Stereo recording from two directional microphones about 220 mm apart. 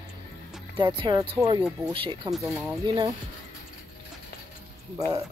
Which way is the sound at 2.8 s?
20° right (ahead or behind).